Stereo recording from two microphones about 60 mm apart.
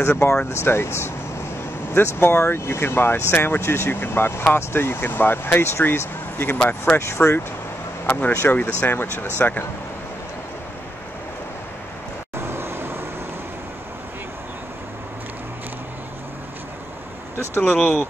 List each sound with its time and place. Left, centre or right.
0.0 s speech: left
7.0 s speech: left
8.1 s speech: left
12.4 s vehicle: right
17.7 s speech: centre